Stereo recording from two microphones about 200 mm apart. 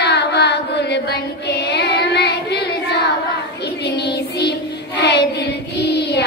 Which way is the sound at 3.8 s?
55° left (ahead or behind).